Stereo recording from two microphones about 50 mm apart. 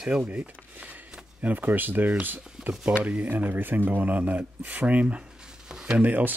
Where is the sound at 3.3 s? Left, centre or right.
Right.